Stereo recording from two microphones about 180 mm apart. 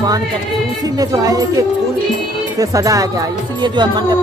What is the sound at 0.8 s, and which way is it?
Speech, 20° right (ahead or behind).